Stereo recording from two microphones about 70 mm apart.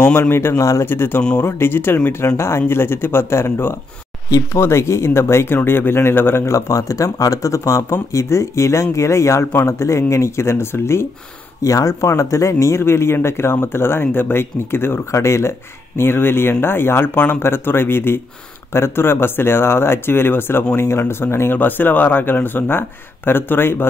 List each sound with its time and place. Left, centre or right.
0.0 s speech: left
6.5 s speech: left
11.6 s speech: left